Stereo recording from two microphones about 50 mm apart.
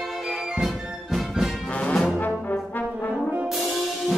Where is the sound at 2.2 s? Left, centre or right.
Left.